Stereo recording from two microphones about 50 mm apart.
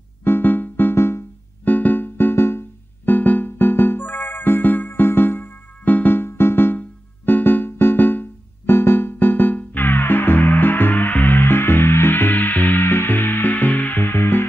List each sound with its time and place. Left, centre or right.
0.2 s music: left
0.9 s music: left
1.6 s music: left
3.1 s music: left
4.0 s music: left
7.2 s keyboard: left
14.0 s music: left